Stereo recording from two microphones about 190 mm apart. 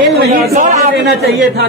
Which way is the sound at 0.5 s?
35° right (ahead or behind).